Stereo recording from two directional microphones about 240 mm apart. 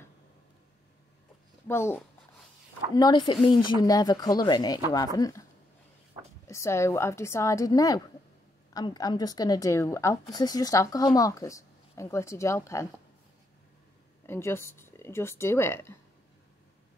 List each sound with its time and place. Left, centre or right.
1.7 s a woman's voice: centre
6.4 s a woman's voice: centre
14.2 s a woman's voice: centre